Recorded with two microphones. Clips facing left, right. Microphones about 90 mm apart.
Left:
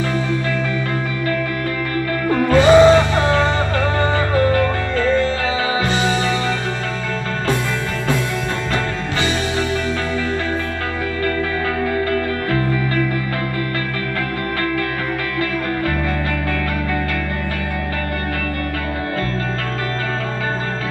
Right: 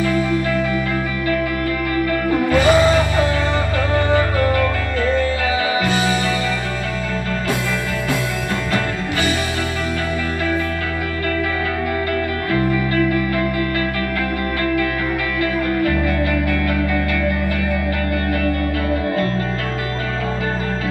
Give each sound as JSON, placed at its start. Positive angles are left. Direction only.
{"t": 2.5, "sound": "music", "side_deg": 25}
{"t": 5.9, "sound": "music", "side_deg": 25}